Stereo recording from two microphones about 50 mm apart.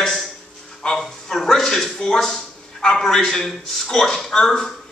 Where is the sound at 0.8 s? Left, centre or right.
Centre.